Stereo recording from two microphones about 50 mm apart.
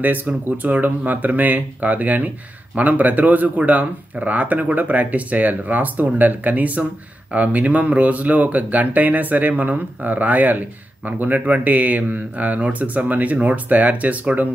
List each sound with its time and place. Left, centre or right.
0.0 s speech: right